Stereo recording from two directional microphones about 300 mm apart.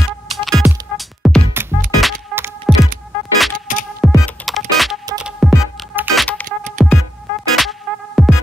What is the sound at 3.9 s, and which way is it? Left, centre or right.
Computer keyboard, centre.